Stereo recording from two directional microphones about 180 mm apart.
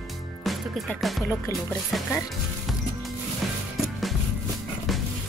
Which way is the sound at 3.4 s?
Centre (ahead or behind).